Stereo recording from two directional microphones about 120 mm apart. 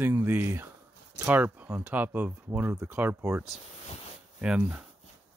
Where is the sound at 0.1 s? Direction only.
20° right (ahead or behind).